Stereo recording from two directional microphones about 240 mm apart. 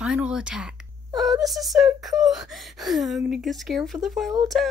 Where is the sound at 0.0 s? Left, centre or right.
Centre.